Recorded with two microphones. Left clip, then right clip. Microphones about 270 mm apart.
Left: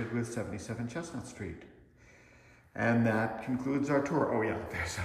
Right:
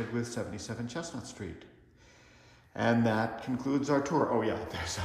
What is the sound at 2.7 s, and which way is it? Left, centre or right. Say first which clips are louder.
A man's voice: right 1 dB; centre.